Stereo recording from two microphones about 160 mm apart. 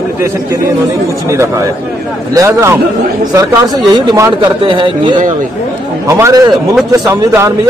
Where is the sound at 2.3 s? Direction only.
20° right (ahead or behind).